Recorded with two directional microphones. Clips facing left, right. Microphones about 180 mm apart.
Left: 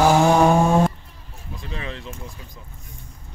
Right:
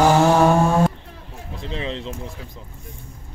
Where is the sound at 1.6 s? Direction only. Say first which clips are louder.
Right 5 dB; 25° right (ahead or behind).